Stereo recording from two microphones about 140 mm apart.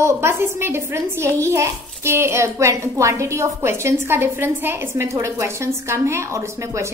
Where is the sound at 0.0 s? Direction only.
20° right (ahead or behind).